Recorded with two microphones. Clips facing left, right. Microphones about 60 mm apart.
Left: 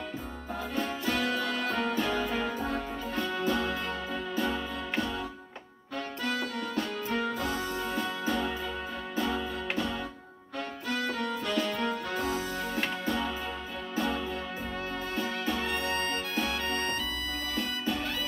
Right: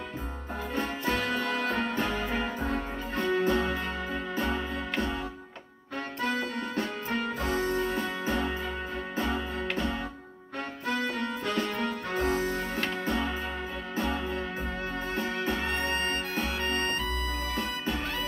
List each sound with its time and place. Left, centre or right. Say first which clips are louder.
0.7 s music: right 1 dB; right
6.3 s music: right 1 dB; right
11.0 s music: left 2 dB; right